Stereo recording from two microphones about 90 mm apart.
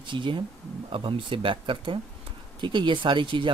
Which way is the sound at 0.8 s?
75° right (ahead or behind).